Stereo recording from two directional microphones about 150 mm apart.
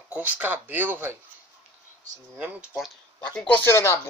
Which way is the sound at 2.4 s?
5° right (ahead or behind).